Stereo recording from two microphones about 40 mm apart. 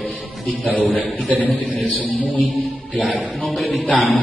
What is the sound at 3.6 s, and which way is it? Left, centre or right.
Speech, left.